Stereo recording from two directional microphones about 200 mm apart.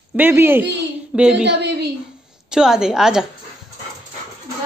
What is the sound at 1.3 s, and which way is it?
Speech, 60° right (ahead or behind).